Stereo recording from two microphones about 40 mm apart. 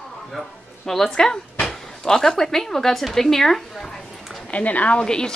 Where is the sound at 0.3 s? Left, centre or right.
Centre.